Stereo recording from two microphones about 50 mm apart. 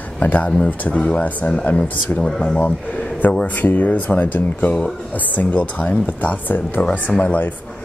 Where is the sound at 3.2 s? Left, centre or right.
Left.